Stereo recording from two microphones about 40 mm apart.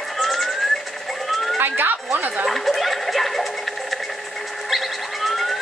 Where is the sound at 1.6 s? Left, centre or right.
Right.